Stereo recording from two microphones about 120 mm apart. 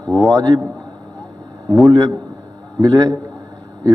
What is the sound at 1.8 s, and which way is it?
A man's voice, 35° right (ahead or behind).